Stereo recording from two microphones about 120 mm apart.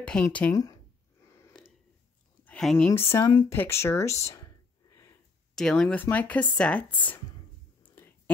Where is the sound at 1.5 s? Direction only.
5° left (ahead or behind).